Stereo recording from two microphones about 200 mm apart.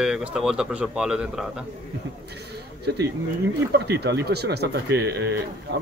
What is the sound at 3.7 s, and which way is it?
Speech, 55° right (ahead or behind).